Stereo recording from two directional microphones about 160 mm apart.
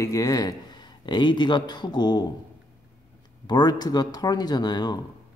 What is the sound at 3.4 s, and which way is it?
Speech, 25° left (ahead or behind).